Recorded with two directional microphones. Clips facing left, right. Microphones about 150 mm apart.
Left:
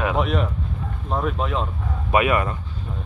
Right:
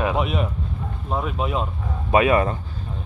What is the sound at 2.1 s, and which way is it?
Speech, 30° right (ahead or behind).